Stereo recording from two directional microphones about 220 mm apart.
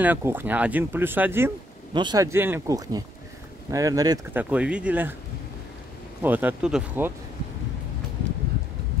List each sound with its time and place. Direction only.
0.0 s speech: 10° right (ahead or behind)
6.2 s speech: 10° right (ahead or behind)